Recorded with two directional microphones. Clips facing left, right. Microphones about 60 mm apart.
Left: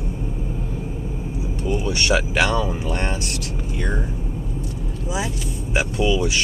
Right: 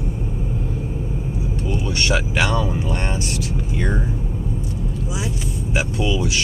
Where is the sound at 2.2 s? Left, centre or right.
Centre.